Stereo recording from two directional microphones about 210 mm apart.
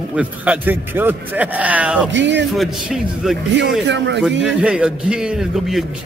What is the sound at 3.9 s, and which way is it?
Speech, 60° right (ahead or behind).